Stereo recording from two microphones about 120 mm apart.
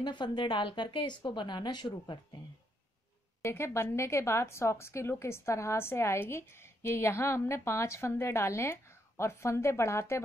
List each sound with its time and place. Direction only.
0.0 s a woman's voice: 40° left (ahead or behind)
3.4 s a woman's voice: 20° left (ahead or behind)